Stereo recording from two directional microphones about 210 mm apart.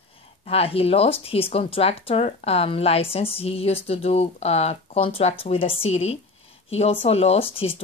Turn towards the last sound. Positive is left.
turn(degrees=25)  # may be behind; listen again after turning